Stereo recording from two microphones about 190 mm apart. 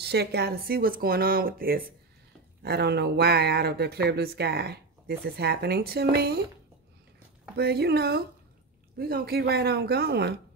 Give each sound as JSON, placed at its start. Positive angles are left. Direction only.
{"t": 0.0, "sound": "speech", "side_deg": -60}
{"t": 7.5, "sound": "speech", "side_deg": -60}